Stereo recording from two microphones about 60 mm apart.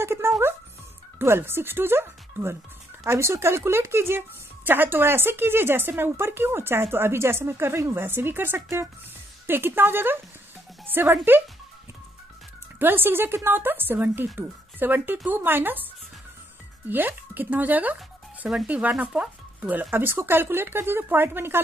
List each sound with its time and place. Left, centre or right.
0.0 s music: right
1.2 s a woman's voice: right
9.5 s a woman's voice: right
11.3 s a woman's voice: right
12.7 s a woman's voice: right
19.9 s a woman's voice: right